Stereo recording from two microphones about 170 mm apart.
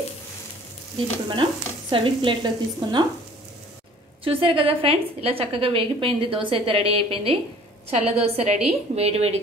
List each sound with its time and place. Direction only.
1.3 s stir: 30° right (ahead or behind)
4.2 s a woman's voice: 30° right (ahead or behind)